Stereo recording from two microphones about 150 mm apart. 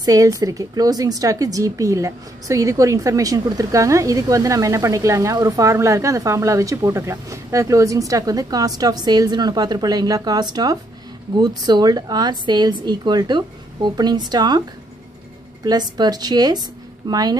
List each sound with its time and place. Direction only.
0.0 s speech: 25° right (ahead or behind)
15.6 s speech: 25° right (ahead or behind)